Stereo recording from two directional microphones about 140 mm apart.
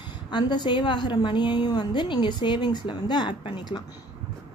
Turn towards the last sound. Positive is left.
turn(degrees=30)  # may be behind; listen again after turning